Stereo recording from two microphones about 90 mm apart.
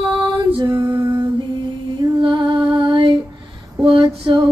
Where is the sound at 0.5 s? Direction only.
40° right (ahead or behind).